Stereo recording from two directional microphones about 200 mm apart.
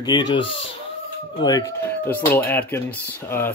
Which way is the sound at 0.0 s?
20° left (ahead or behind).